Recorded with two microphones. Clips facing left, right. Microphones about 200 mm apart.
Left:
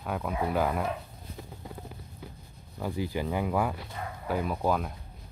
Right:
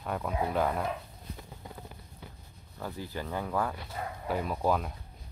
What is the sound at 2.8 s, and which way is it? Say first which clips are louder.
Speech: left 6 dB; 15° left (ahead or behind).